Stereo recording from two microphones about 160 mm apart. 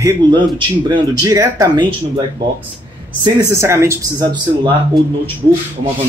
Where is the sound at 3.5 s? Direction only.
15° right (ahead or behind).